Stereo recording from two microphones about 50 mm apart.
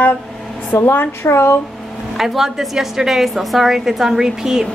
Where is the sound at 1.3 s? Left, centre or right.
Left.